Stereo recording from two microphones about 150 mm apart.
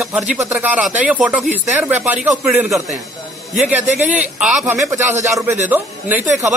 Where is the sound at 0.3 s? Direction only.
10° right (ahead or behind).